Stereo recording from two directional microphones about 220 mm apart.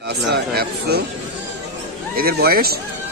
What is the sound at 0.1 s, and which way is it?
Speech, 45° right (ahead or behind).